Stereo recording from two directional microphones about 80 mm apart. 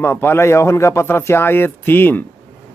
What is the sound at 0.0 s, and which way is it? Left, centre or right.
Speech, left.